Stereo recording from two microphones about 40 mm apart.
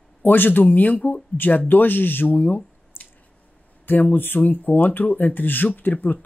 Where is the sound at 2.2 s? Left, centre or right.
Left.